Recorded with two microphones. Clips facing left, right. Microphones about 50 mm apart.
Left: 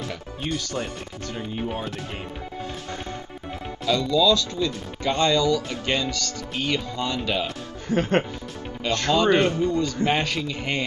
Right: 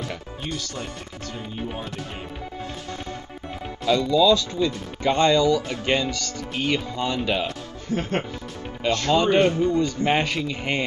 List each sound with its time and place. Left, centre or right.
3.8 s speech: centre
7.2 s speech: centre
7.9 s speech: left
9.1 s speech: right